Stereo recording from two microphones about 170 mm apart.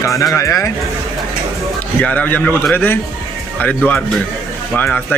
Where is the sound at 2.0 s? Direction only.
10° left (ahead or behind).